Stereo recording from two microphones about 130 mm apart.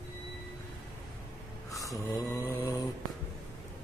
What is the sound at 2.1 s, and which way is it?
Mantra, 25° left (ahead or behind).